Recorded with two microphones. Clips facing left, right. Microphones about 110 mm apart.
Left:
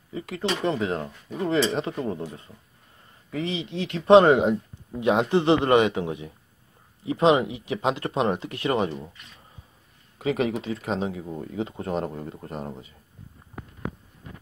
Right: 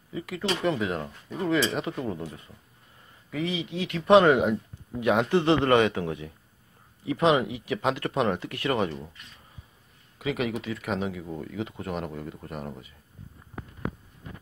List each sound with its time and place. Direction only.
0.1 s speech: 30° left (ahead or behind)
3.3 s speech: 30° left (ahead or behind)
10.1 s speech: 35° left (ahead or behind)